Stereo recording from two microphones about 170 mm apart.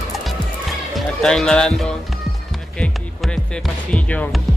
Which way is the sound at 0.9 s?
5° left (ahead or behind).